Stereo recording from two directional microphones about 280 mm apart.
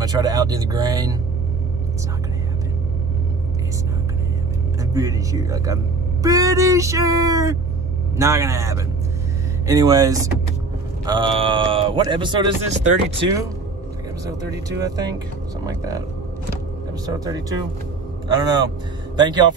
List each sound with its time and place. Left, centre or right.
0.0 s speech: centre
4.9 s speech: centre
14.8 s speech: centre
17.0 s speech: centre